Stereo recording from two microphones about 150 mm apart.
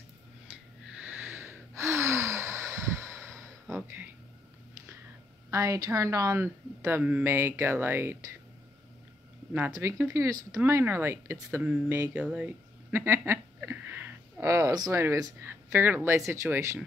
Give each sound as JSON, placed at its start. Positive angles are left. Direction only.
{"t": 0.9, "sound": "gasp", "side_deg": -10}
{"t": 3.7, "sound": "a sound", "side_deg": -15}
{"t": 5.5, "sound": "speech", "side_deg": -20}
{"t": 9.7, "sound": "speech", "side_deg": -15}